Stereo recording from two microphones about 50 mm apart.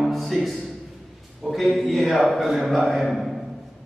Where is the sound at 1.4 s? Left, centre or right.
Centre.